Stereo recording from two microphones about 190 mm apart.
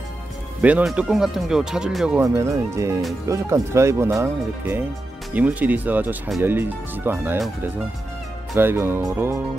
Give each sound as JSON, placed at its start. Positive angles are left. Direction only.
{"t": 0.6, "sound": "speech", "side_deg": -5}
{"t": 2.2, "sound": "speech", "side_deg": -15}
{"t": 8.5, "sound": "speech", "side_deg": -10}